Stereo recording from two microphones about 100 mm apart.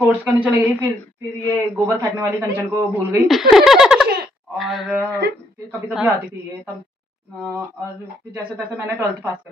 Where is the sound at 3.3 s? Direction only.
5° right (ahead or behind).